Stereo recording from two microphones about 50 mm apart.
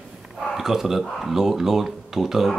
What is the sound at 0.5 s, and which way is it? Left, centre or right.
Speech, centre.